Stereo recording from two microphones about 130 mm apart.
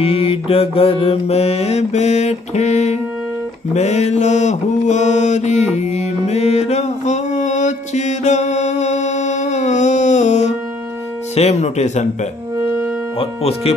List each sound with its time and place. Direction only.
0.0 s mantra: 45° left (ahead or behind); by 10.5 s 65° left (ahead or behind)
11.3 s speech: 60° left (ahead or behind)
12.5 s music: 20° right (ahead or behind)
13.2 s mantra: 50° left (ahead or behind)